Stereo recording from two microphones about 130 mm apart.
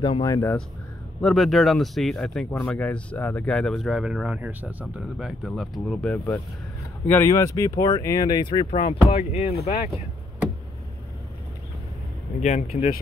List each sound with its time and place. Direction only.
0.2 s speech: 20° left (ahead or behind)
1.2 s speech: centre (ahead or behind)
5.4 s speech: centre (ahead or behind); by 8.6 s 35° left (ahead or behind)
9.1 s speech: 55° left (ahead or behind)
12.4 s speech: 65° left (ahead or behind)